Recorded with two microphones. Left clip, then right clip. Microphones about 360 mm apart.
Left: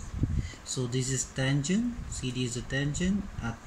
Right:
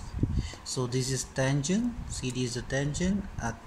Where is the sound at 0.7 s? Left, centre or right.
Centre.